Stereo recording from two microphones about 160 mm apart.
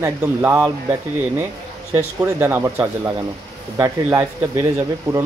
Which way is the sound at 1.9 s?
15° right (ahead or behind).